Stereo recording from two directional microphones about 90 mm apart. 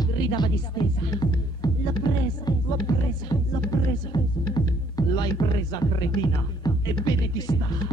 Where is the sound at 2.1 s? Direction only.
50° left (ahead or behind).